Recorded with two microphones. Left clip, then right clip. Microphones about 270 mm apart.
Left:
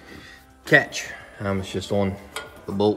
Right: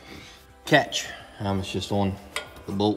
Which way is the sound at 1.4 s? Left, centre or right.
Centre.